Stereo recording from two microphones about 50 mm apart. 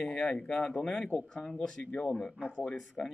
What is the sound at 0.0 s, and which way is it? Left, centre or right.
Speech, centre.